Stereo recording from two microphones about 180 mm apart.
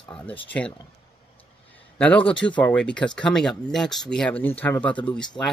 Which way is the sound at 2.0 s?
5° left (ahead or behind).